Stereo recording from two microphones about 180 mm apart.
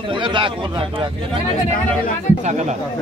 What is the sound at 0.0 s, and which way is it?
Speech, 25° right (ahead or behind).